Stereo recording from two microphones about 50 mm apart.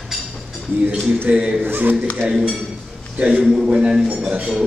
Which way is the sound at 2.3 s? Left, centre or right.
Centre.